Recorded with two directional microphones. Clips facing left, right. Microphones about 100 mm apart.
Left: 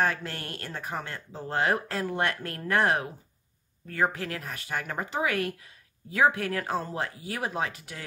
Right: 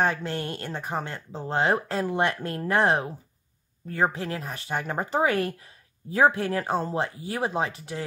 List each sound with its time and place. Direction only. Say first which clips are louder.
0.0 s speech: right 3 dB; 25° right (ahead or behind)